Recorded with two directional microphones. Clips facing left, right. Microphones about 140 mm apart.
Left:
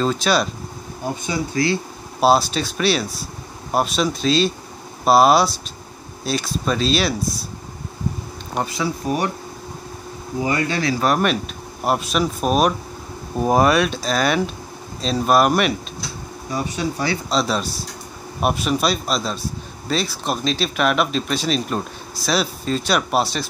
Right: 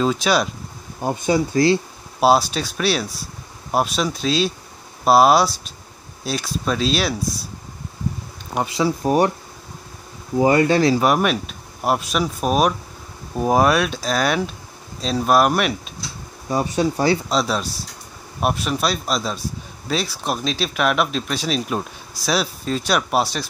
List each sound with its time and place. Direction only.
0.0 s speech: 5° right (ahead or behind)
1.2 s speech: 30° right (ahead or behind)
2.1 s speech: 5° right (ahead or behind)
8.7 s speech: 35° right (ahead or behind)
10.4 s speech: 35° right (ahead or behind)
11.0 s speech: 5° right (ahead or behind)
16.4 s speech: 40° right (ahead or behind)
17.3 s speech: centre (ahead or behind)